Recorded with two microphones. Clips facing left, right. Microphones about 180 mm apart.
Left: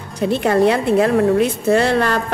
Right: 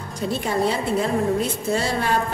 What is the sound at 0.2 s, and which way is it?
A woman's voice, 65° left (ahead or behind).